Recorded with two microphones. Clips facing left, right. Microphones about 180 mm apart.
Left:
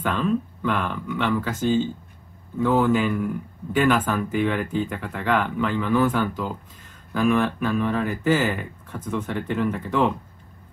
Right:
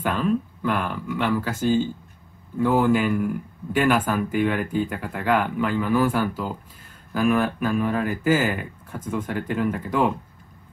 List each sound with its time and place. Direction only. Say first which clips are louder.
0.0 s speech: even; 10° right (ahead or behind)